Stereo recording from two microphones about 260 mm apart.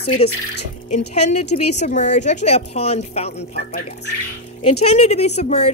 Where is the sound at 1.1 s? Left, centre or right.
Left.